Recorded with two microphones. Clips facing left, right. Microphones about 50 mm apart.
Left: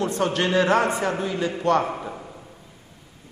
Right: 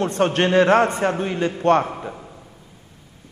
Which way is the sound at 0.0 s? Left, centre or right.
Right.